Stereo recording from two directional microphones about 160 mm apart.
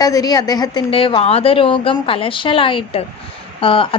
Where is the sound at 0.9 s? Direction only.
35° left (ahead or behind).